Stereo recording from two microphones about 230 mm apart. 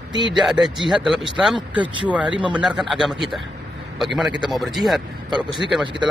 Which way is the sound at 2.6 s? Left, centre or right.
Centre.